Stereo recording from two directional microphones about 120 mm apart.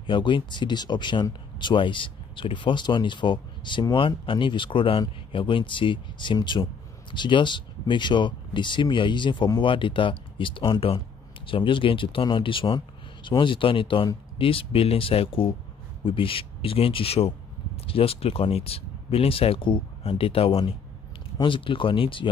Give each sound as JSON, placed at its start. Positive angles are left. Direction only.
{"t": 0.0, "sound": "speech", "side_deg": 45}